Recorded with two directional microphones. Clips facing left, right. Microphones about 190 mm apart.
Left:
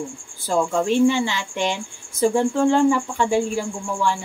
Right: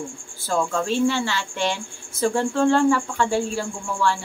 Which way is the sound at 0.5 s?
15° left (ahead or behind).